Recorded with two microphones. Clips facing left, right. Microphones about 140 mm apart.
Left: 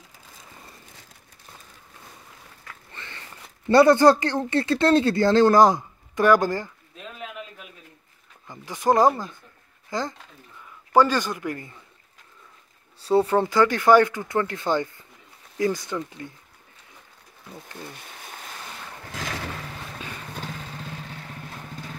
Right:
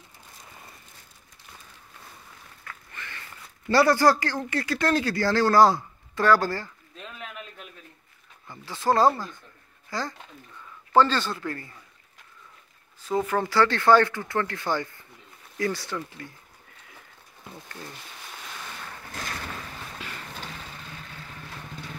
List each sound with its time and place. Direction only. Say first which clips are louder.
2.9 s zipper: left 2 dB; 25° left (ahead or behind)
3.6 s speech: left 5 dB; 20° left (ahead or behind)
8.5 s speech: left 3 dB; 15° left (ahead or behind)
13.0 s speech: left 6 dB; 35° left (ahead or behind)
13.5 s speech: even; 15° left (ahead or behind)
19.1 s a sound: left 4 dB; 90° left